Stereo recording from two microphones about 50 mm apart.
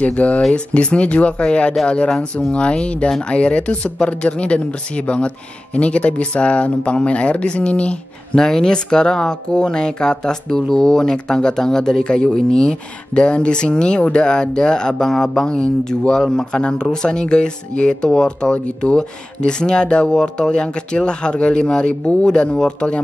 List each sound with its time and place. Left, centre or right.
0.0 s speech: left
8.4 s speech: centre